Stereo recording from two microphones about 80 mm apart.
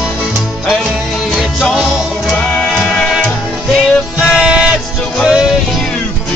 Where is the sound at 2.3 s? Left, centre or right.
Centre.